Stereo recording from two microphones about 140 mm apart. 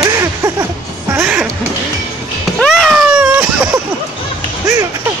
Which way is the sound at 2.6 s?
Centre (ahead or behind).